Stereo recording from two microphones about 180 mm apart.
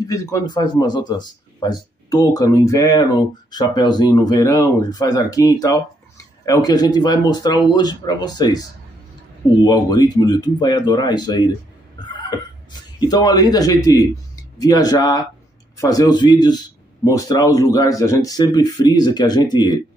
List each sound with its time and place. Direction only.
0.0 s speech: 20° left (ahead or behind)
9.7 s speech: 20° left (ahead or behind)
12.1 s a sound: 25° left (ahead or behind)
13.0 s speech: 20° left (ahead or behind)